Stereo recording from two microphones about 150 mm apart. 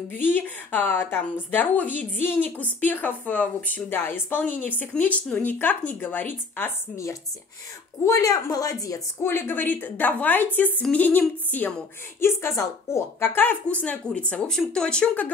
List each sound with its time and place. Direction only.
0.2 s a woman's voice: 10° left (ahead or behind)